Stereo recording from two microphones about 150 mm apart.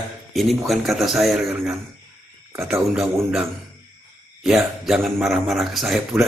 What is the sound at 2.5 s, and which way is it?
Speech, 15° right (ahead or behind).